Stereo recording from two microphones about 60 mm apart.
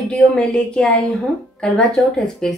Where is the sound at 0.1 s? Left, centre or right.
Centre.